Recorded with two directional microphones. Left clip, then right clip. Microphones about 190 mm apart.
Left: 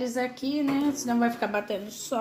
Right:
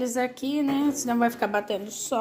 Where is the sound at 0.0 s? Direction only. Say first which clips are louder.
Right 2 dB; 15° right (ahead or behind).